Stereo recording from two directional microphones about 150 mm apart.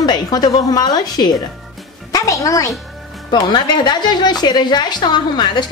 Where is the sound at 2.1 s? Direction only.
20° left (ahead or behind).